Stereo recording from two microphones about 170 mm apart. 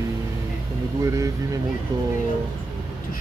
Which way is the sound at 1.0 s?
20° right (ahead or behind).